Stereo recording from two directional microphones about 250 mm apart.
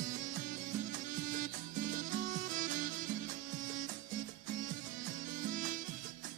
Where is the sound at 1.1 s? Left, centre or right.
Right.